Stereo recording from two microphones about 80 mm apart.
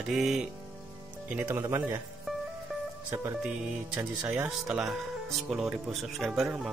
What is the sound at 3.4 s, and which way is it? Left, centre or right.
Speech, centre.